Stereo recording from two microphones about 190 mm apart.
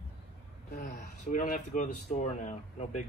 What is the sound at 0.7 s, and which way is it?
Speech, 40° left (ahead or behind).